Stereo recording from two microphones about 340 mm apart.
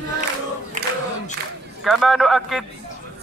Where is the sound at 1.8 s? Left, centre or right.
Centre.